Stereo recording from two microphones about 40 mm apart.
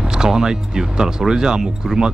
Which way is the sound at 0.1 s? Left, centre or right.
Centre.